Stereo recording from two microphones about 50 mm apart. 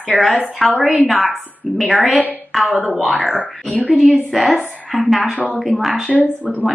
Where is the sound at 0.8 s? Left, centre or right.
Centre.